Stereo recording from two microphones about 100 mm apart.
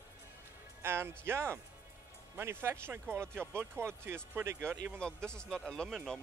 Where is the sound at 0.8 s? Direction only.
25° right (ahead or behind).